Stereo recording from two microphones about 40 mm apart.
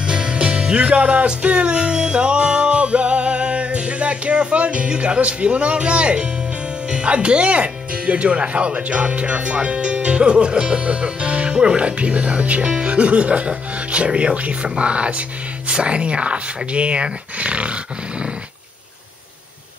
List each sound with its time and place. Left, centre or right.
0.0 s music: right
6.9 s speech: right